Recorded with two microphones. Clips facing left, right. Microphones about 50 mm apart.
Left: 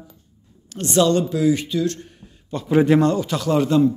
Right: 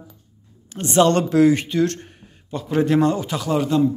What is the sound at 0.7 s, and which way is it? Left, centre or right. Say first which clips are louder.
Speech: left 1 dB; right.